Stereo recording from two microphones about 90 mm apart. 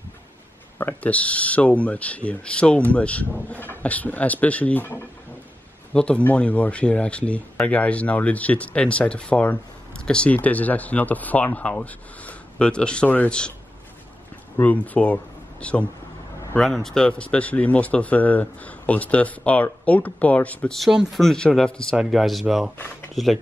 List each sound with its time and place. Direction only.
0.7 s speech: 20° left (ahead or behind)
14.6 s speech: 15° left (ahead or behind)
20.7 s speech: 5° right (ahead or behind)
21.9 s speech: 5° right (ahead or behind)